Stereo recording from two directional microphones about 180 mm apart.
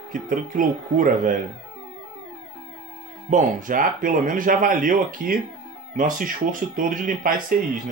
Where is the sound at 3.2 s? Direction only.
45° right (ahead or behind).